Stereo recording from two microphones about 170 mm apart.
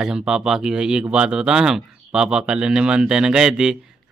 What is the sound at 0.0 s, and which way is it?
Speech, 5° right (ahead or behind).